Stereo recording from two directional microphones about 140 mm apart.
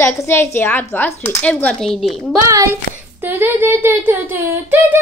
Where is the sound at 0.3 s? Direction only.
15° left (ahead or behind).